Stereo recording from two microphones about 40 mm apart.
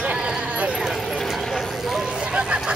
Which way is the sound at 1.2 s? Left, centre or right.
Centre.